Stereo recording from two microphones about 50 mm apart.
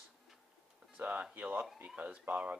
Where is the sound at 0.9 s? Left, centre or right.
Right.